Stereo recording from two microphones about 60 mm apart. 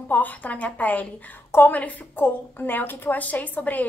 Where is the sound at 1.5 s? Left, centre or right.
Left.